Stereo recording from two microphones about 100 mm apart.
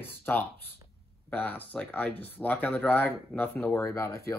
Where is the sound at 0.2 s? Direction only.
20° left (ahead or behind).